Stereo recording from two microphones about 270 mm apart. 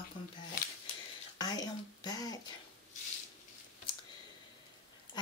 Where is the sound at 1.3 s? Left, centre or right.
Centre.